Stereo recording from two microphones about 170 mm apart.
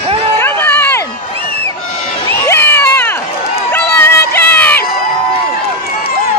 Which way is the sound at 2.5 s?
15° left (ahead or behind).